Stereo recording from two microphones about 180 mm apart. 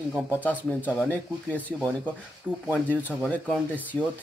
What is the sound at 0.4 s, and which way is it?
Speech, 10° left (ahead or behind).